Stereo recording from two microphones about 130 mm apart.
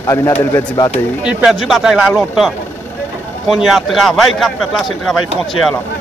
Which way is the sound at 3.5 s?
Centre (ahead or behind).